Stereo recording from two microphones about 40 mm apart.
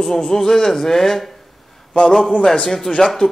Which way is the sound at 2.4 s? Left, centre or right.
Centre.